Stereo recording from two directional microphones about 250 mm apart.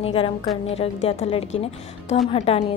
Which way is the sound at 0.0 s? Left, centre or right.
Left.